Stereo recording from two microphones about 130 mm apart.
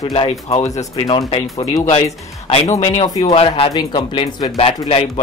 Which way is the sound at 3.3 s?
45° left (ahead or behind).